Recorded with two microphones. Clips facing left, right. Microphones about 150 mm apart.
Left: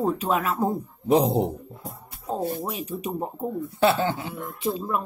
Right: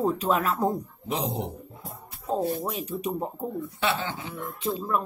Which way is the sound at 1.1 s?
35° left (ahead or behind).